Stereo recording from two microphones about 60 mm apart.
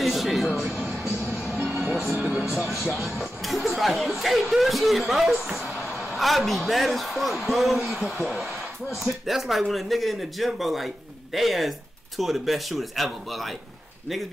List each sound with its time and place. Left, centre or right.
0.0 s a sound: centre
1.5 s music: left
2.1 s music: centre
2.5 s music: centre
3.4 s a man's voice: centre